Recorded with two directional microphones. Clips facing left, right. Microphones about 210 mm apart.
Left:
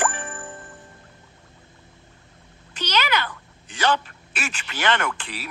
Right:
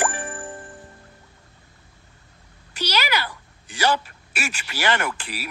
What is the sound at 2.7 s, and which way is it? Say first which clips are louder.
A woman's voice: left 1 dB; 10° right (ahead or behind).